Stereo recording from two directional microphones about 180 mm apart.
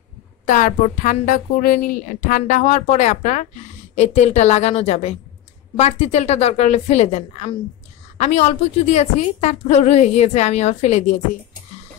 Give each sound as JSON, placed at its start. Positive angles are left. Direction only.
{"t": 0.5, "sound": "a woman's voice", "side_deg": 50}